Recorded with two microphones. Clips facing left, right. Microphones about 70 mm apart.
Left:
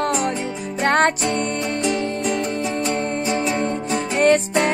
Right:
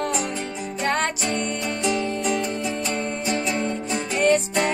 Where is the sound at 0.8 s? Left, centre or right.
Left.